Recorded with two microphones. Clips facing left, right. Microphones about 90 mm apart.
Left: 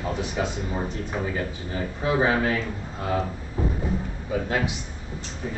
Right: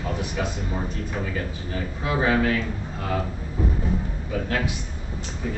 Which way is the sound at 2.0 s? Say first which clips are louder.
Even; 20° left (ahead or behind).